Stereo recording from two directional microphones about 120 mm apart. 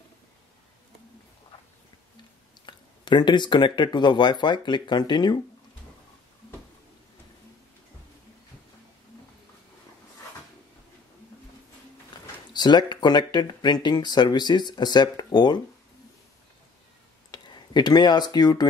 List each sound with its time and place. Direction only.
2.6 s speech: 40° left (ahead or behind)
12.1 s a sound: 40° left (ahead or behind)
12.5 s speech: 40° left (ahead or behind)
17.3 s speech: 35° left (ahead or behind)